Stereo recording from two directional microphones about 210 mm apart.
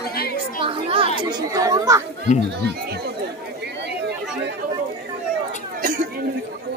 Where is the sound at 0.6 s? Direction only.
25° right (ahead or behind).